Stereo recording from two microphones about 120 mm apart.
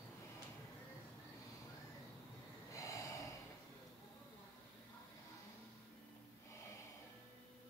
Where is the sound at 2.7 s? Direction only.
25° left (ahead or behind).